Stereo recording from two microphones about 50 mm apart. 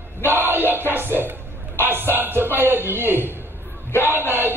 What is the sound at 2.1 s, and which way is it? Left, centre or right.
A man's voice, right.